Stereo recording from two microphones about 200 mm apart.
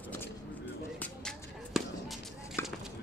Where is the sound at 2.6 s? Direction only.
10° left (ahead or behind).